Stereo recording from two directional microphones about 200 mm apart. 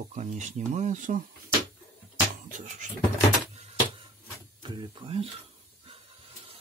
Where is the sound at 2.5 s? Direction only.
40° right (ahead or behind).